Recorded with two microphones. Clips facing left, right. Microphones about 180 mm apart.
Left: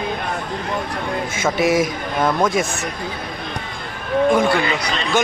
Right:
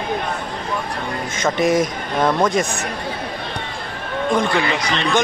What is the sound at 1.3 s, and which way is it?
Speech, 5° left (ahead or behind).